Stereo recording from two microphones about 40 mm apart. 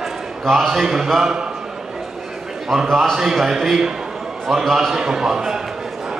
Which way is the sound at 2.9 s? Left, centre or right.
Centre.